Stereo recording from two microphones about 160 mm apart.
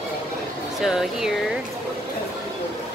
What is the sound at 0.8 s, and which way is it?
Speech, centre (ahead or behind).